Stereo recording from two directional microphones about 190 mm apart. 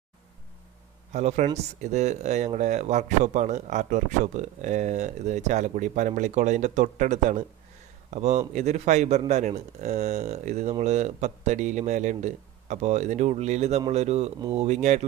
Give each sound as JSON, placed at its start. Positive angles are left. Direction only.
{"t": 1.1, "sound": "speech", "side_deg": -35}